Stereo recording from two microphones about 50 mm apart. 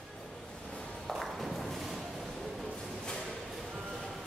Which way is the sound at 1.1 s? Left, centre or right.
Centre.